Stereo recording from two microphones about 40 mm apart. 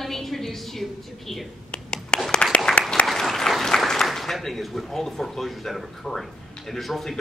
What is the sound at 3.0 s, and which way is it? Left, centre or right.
Applause, centre.